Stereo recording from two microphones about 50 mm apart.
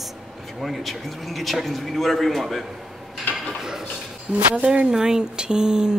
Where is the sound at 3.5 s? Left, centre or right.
Centre.